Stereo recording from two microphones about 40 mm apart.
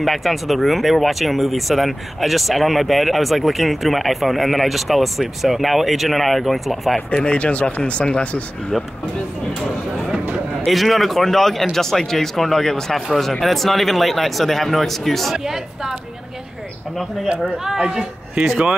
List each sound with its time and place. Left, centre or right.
0.0 s speech: centre
7.2 s speech: left
10.7 s speech: centre
15.3 s speech: centre
17.6 s speech: centre